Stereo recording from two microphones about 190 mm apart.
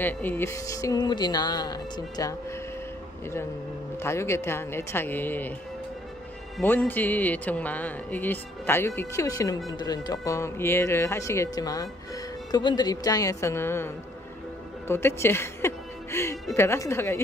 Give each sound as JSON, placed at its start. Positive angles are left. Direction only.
{"t": 0.0, "sound": "speech", "side_deg": 10}
{"t": 4.0, "sound": "speech", "side_deg": 15}
{"t": 6.6, "sound": "a woman's voice", "side_deg": 10}